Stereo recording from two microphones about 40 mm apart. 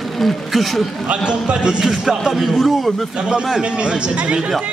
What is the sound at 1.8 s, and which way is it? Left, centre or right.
A man's voice, centre.